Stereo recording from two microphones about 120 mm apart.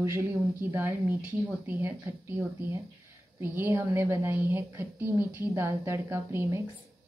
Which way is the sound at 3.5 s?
20° right (ahead or behind).